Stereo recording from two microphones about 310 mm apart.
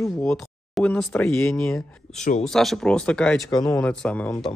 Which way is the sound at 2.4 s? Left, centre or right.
Centre.